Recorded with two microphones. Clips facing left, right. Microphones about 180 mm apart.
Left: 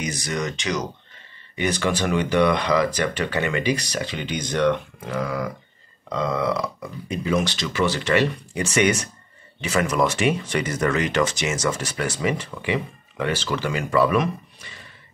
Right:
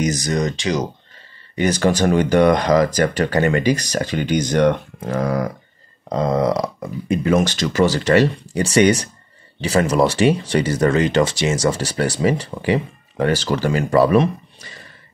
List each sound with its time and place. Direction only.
0.0 s speech: 40° right (ahead or behind)